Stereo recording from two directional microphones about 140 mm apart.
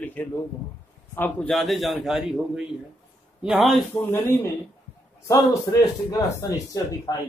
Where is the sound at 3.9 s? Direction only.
15° left (ahead or behind).